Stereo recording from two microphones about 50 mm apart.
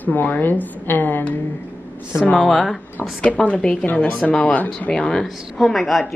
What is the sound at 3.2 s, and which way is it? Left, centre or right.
Speech, left.